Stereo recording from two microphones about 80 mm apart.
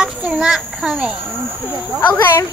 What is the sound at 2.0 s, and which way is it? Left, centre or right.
Speech, left.